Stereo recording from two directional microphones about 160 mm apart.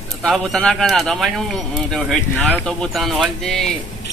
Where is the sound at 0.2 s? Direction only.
Centre (ahead or behind).